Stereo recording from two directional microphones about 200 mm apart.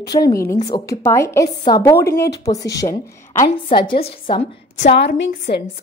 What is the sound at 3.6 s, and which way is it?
A woman's voice, 25° left (ahead or behind).